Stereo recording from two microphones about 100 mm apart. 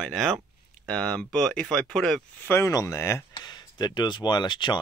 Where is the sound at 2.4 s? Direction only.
30° left (ahead or behind).